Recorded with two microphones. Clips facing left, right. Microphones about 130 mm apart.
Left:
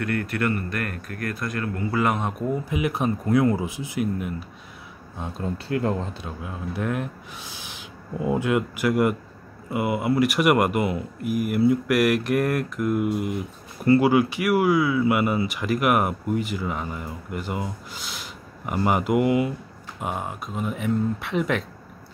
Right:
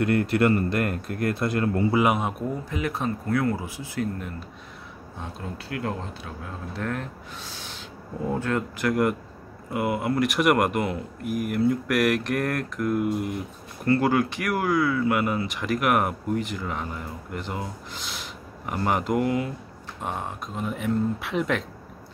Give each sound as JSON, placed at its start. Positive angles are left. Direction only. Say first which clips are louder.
{"t": 0.0, "sound": "speech", "louder": "right 4 dB", "side_deg": -25}
{"t": 2.0, "sound": "a man's voice", "louder": "left 1 dB", "side_deg": -10}
{"t": 2.7, "sound": "speech", "louder": "left 3 dB", "side_deg": 15}
{"t": 5.2, "sound": "speech", "louder": "left 6 dB", "side_deg": 30}
{"t": 6.4, "sound": "speech", "louder": "left 3 dB", "side_deg": 10}